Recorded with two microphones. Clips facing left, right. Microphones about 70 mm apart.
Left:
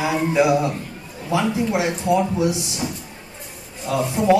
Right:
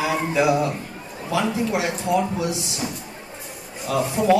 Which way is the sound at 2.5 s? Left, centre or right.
Right.